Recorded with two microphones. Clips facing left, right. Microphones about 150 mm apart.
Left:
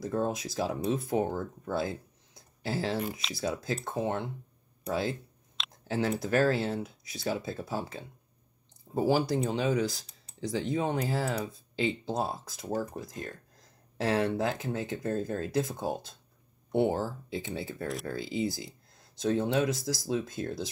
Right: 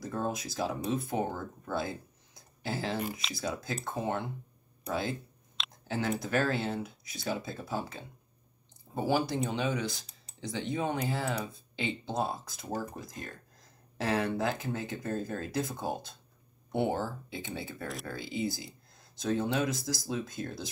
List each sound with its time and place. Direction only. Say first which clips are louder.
0.0 s speech: left 4 dB; 35° left (ahead or behind)
13.9 s speech: left 3 dB; 30° left (ahead or behind)